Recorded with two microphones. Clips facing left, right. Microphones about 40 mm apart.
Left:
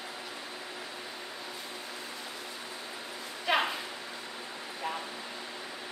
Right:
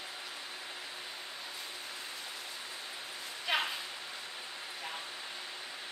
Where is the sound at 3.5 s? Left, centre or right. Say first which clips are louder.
Left 5 dB; centre.